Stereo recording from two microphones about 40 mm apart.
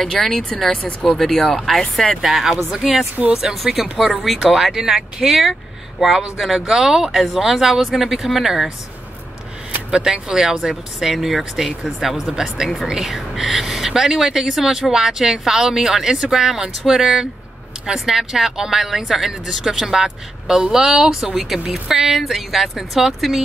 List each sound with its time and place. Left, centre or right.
0.0 s speech: centre
2.2 s speech: centre
4.8 s speech: centre
5.4 s speech: centre
10.1 s speech: centre
13.1 s speech: centre